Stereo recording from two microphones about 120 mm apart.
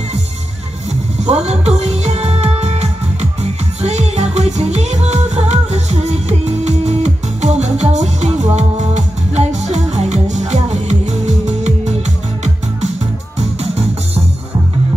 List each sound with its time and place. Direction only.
1.2 s music: 65° right (ahead or behind)
13.4 s music: 60° right (ahead or behind)